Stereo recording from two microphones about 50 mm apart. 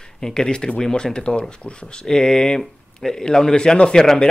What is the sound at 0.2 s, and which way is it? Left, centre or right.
Speech, centre.